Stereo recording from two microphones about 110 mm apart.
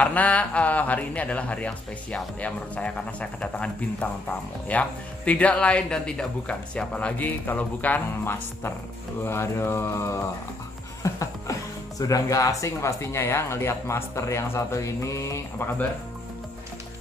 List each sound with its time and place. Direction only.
0.0 s speech: 15° left (ahead or behind)
11.0 s chuckle: 30° left (ahead or behind)
12.0 s speech: 30° left (ahead or behind)